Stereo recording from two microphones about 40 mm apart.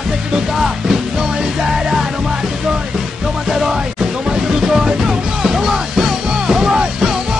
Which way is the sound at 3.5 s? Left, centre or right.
Centre.